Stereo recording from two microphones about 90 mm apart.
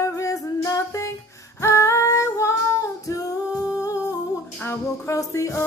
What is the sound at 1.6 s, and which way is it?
Female singing, 35° left (ahead or behind).